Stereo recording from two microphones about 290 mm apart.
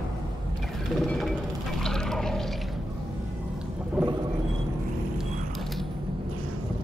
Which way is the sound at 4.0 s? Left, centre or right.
Centre.